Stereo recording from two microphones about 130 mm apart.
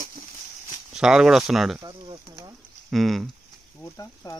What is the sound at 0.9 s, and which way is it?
Speech, 5° right (ahead or behind).